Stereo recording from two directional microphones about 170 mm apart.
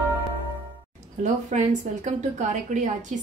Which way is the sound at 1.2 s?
45° right (ahead or behind).